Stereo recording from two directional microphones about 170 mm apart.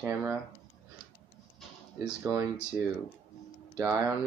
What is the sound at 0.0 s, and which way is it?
Speech, 15° right (ahead or behind).